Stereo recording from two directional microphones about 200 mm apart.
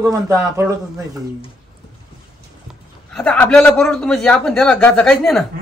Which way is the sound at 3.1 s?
10° left (ahead or behind).